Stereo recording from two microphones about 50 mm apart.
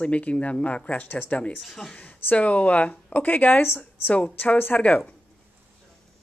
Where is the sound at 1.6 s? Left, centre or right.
Centre.